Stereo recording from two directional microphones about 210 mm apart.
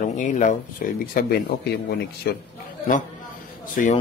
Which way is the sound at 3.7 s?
40° left (ahead or behind).